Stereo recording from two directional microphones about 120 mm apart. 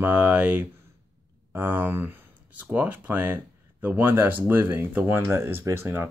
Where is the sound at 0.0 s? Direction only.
15° right (ahead or behind).